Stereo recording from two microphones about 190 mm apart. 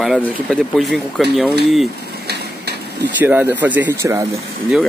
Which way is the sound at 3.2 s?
10° right (ahead or behind).